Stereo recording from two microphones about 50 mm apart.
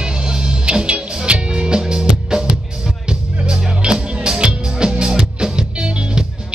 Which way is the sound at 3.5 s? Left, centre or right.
Centre.